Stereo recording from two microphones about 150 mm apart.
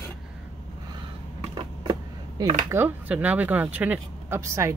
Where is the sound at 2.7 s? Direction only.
15° right (ahead or behind).